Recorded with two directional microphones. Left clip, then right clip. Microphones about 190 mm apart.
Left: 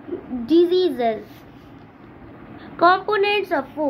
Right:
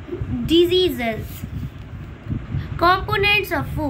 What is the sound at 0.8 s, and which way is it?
Speech, centre (ahead or behind).